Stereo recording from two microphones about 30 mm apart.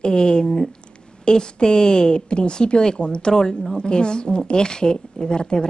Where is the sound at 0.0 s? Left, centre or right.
Left.